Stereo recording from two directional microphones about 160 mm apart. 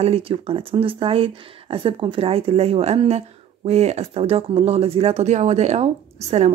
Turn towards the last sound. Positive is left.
turn(degrees=-40)  # may be behind; listen again after turning